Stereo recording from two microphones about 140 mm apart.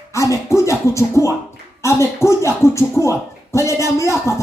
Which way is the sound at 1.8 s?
20° left (ahead or behind).